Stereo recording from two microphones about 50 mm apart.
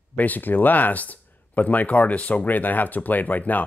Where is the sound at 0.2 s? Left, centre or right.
Left.